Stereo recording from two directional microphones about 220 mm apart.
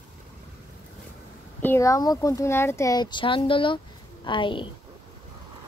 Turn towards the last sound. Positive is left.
turn(degrees=20)  # may be behind; listen again after turning